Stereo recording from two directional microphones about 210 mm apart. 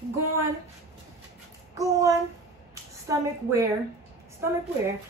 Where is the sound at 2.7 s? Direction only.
15° right (ahead or behind).